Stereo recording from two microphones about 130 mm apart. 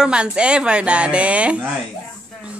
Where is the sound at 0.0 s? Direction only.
5° right (ahead or behind).